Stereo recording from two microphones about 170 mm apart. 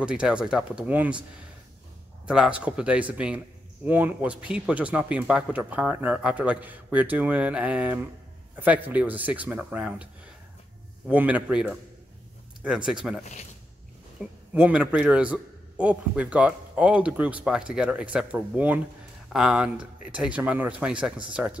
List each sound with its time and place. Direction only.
0.0 s speech: 5° right (ahead or behind)
2.2 s speech: 5° right (ahead or behind)
11.1 s speech: 10° right (ahead or behind)
13.2 s speech: 45° left (ahead or behind)
14.5 s speech: 5° right (ahead or behind)